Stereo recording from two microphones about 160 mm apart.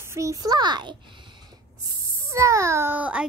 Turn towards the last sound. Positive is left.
turn(degrees=-10)  # may be behind; listen again after turning